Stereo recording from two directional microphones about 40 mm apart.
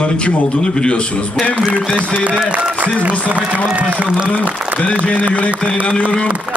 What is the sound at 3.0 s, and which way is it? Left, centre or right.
A man's voice, right.